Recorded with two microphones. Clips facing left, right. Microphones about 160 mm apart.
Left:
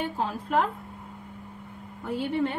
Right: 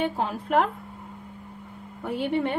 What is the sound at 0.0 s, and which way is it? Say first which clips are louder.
Speech: right 3 dB; 65° right (ahead or behind).